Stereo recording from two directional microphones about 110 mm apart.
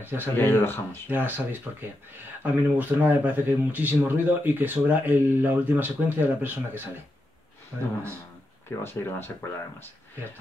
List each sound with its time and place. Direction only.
0.0 s speech: 20° right (ahead or behind)
0.4 s speech: 20° left (ahead or behind)
1.1 s speech: 15° right (ahead or behind)
8.8 s speech: 20° left (ahead or behind)